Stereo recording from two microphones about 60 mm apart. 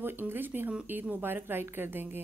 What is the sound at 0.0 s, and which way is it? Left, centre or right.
Speech, right.